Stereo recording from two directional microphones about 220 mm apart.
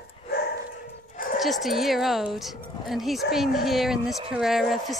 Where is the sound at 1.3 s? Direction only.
Centre (ahead or behind).